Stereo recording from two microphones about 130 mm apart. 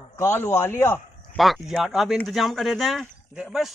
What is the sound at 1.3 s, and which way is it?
Speech, centre (ahead or behind).